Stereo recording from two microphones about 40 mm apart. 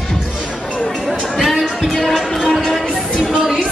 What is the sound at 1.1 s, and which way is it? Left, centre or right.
Music, centre.